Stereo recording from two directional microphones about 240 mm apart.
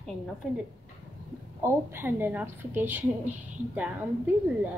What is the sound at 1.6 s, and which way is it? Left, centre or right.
A woman's voice, centre.